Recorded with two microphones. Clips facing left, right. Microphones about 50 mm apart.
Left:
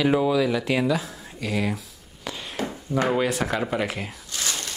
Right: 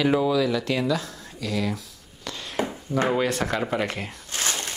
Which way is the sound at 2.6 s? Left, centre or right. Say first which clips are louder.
Right 3 dB; right.